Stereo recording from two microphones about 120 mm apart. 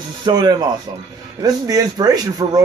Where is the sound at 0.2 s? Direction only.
35° right (ahead or behind).